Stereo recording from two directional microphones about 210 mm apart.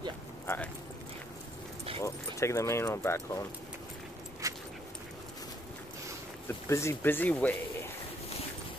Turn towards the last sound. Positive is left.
turn(degrees=5)  # may be behind; listen again after turning